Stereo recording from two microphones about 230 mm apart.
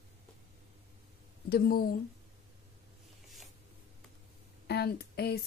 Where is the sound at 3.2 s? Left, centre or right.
Centre.